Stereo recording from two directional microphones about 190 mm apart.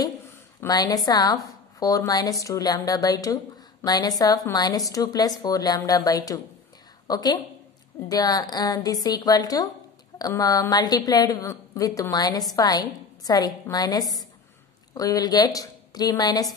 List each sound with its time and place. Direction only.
0.6 s a woman's voice: 20° left (ahead or behind)